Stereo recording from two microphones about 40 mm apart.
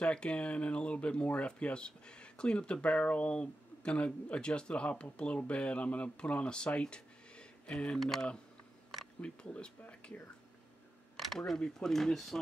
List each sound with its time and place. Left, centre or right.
0.0 s speech: left
8.0 s speech: centre
9.2 s speech: left
11.1 s camera: centre
11.5 s speech: centre
11.9 s speech: centre